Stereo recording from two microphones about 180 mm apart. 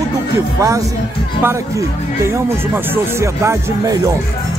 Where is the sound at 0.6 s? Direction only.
20° right (ahead or behind).